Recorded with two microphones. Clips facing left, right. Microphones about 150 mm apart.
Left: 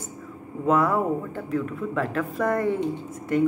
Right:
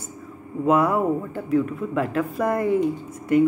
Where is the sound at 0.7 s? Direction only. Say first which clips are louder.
Right 2 dB; 10° right (ahead or behind).